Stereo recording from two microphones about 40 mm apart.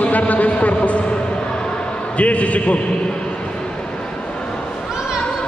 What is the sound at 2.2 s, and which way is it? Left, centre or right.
Speech, left.